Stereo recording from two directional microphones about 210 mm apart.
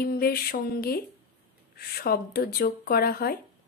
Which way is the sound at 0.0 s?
45° left (ahead or behind).